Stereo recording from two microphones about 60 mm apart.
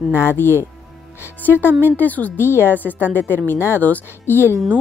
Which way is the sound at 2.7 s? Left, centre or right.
Right.